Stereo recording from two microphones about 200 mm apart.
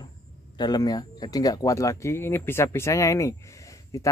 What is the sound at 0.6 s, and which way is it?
Speech, 20° left (ahead or behind).